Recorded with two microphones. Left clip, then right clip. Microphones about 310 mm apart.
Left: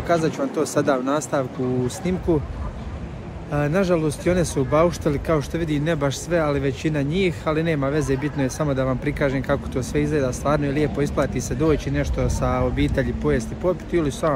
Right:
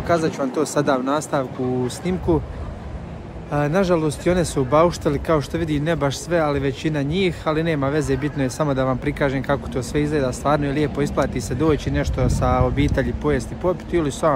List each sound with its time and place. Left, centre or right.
0.0 s speech: centre
3.5 s speech: centre